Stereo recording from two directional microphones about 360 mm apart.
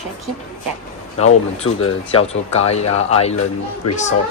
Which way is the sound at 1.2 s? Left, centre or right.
Centre.